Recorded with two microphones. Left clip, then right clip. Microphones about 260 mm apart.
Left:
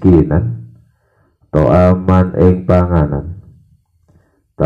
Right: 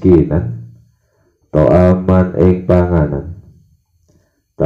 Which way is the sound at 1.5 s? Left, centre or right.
Left.